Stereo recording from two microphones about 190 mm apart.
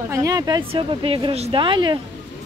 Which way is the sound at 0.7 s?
30° right (ahead or behind).